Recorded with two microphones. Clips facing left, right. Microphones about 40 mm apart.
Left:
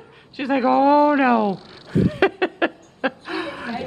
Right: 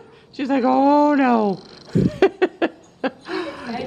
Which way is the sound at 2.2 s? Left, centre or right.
Centre.